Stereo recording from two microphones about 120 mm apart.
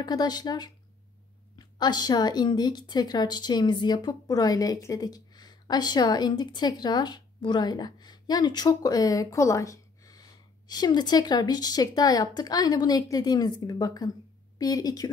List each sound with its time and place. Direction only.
0.0 s a woman's voice: 35° left (ahead or behind)